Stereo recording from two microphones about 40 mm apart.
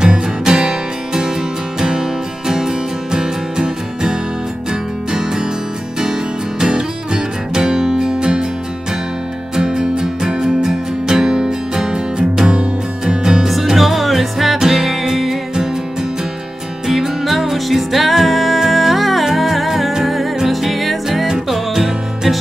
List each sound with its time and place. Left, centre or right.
0.0 s music: right
6.6 s music: centre
9.6 s music: centre
13.5 s music: centre
16.8 s music: centre